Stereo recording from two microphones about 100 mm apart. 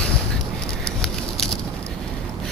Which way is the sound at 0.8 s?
5° left (ahead or behind).